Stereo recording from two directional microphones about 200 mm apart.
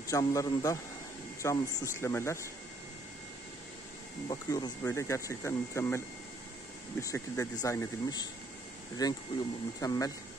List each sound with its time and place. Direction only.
0.0 s speech: 15° left (ahead or behind)
4.3 s speech: 20° left (ahead or behind)